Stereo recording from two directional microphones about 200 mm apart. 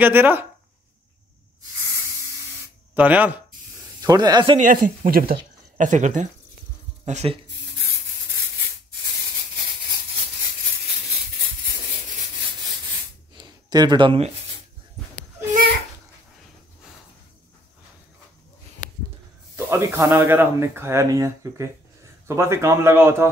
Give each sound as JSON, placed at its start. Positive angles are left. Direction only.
{"t": 0.0, "sound": "speech", "side_deg": -10}
{"t": 2.9, "sound": "speech", "side_deg": -10}
{"t": 4.0, "sound": "speech", "side_deg": -20}
{"t": 4.6, "sound": "speech", "side_deg": -45}
{"t": 13.4, "sound": "a sound", "side_deg": -20}
{"t": 18.8, "sound": "a sound", "side_deg": 40}
{"t": 19.5, "sound": "speech", "side_deg": -15}